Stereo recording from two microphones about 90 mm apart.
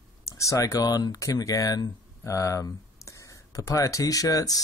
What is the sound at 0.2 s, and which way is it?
Speech, 35° left (ahead or behind).